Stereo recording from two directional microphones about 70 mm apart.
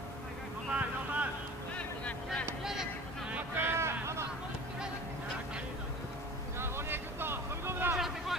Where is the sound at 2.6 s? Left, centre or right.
Centre.